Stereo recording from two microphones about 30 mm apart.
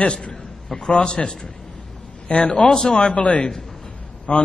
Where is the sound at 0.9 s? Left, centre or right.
Left.